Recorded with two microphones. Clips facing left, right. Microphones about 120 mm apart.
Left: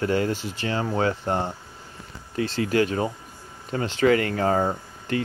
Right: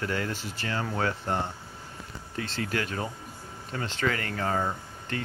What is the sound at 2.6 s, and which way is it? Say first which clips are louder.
Speech: left 11 dB; 35° left (ahead or behind).